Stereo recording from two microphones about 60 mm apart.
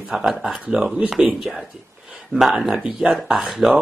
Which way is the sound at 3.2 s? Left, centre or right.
Centre.